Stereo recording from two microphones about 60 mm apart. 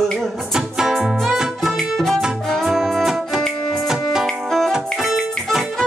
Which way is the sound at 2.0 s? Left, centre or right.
Centre.